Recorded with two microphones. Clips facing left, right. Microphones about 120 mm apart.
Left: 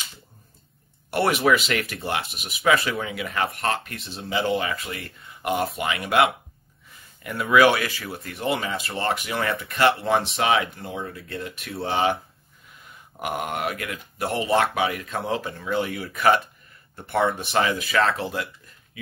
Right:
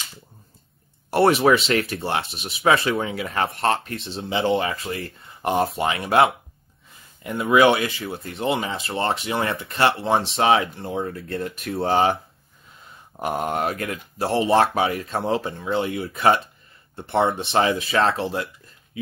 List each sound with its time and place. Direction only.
1.1 s speech: 30° right (ahead or behind)
13.2 s speech: 35° right (ahead or behind)